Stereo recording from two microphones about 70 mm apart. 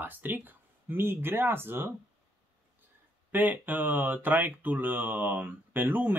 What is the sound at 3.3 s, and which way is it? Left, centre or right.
Speech, right.